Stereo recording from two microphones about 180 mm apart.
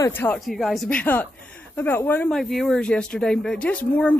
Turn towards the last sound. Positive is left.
turn(degrees=5)  # may be behind; listen again after turning